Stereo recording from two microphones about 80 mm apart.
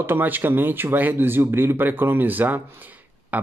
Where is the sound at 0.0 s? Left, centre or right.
Right.